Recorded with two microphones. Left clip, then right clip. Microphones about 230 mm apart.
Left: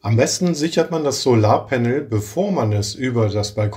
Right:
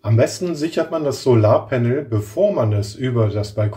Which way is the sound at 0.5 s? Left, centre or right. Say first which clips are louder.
Left 2 dB; left.